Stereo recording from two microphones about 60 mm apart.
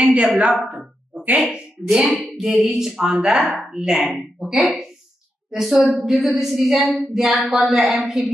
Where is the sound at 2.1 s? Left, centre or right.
Centre.